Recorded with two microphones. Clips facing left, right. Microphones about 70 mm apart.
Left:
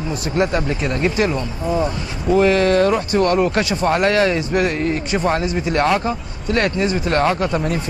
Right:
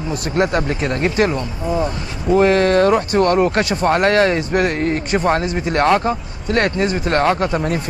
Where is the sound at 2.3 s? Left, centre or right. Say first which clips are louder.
Right 1 dB; right.